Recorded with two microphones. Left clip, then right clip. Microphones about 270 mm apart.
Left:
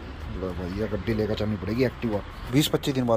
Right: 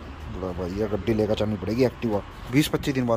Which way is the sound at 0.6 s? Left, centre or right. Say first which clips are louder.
Right 5 dB; centre.